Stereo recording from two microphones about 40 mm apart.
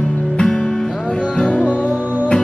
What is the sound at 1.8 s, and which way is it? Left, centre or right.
Music, right.